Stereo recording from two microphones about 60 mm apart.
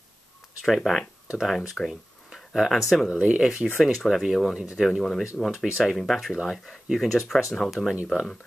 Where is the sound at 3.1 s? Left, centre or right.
Centre.